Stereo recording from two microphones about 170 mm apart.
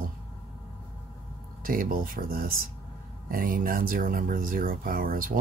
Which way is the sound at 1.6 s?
55° right (ahead or behind).